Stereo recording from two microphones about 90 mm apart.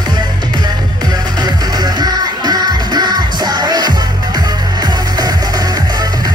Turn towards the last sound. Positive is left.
turn(degrees=-45)  # may be behind; listen again after turning